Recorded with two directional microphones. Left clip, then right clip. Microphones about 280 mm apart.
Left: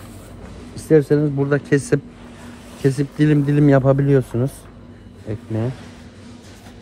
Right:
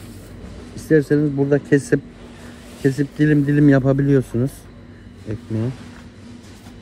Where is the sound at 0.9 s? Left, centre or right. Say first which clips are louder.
Left 1 dB; left.